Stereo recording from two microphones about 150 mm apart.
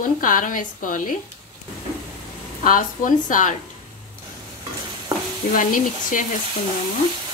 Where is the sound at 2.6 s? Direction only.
60° left (ahead or behind).